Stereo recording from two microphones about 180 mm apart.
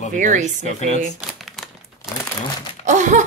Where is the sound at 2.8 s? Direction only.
45° right (ahead or behind).